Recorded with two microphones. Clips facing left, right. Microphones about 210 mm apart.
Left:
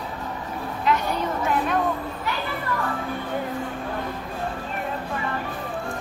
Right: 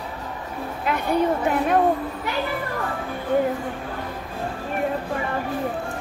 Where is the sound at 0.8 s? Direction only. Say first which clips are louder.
Right 2 dB; 55° right (ahead or behind).